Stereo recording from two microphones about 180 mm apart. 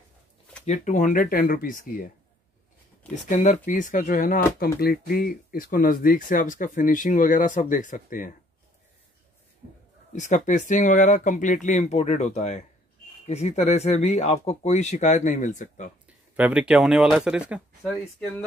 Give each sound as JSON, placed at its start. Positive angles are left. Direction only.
{"t": 0.7, "sound": "speech", "side_deg": 45}
{"t": 3.3, "sound": "speech", "side_deg": 40}
{"t": 10.1, "sound": "speech", "side_deg": 40}
{"t": 16.3, "sound": "speech", "side_deg": -10}